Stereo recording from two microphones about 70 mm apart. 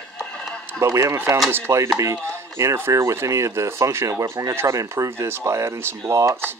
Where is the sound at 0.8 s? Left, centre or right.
Right.